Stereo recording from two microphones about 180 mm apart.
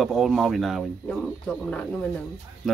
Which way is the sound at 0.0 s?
Centre (ahead or behind).